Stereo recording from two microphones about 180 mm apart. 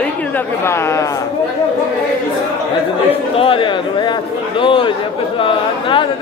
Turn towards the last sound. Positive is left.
turn(degrees=30)  # may be behind; listen again after turning